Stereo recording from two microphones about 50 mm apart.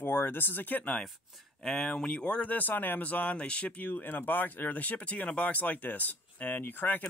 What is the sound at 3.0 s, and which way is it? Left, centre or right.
Speech, left.